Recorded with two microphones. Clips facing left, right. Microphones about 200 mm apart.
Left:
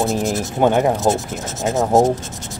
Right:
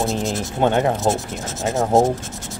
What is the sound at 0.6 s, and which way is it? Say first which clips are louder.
Speech: left 2 dB; 10° left (ahead or behind).